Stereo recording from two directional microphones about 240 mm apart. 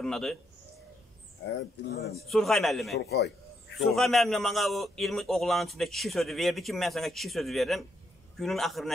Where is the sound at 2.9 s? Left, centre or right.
Left.